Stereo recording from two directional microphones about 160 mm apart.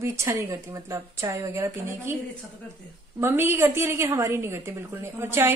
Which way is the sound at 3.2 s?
15° right (ahead or behind).